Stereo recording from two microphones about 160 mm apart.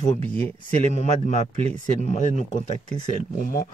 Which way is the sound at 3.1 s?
65° left (ahead or behind).